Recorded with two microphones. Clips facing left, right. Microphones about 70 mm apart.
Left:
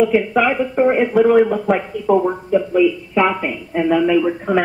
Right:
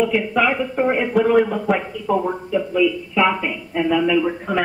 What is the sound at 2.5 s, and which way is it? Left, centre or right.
Speech, left.